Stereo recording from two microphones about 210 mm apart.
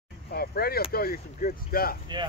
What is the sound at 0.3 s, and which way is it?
Speech, 45° left (ahead or behind).